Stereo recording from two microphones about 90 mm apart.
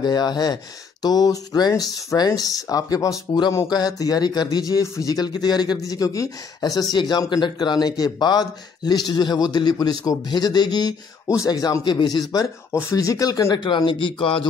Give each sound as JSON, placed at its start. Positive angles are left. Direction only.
{"t": 0.0, "sound": "speech", "side_deg": 50}
{"t": 12.9, "sound": "speech", "side_deg": 40}
{"t": 13.6, "sound": "speech", "side_deg": 60}